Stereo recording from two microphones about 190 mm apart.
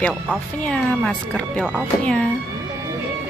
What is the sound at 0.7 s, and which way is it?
Speech, 5° left (ahead or behind).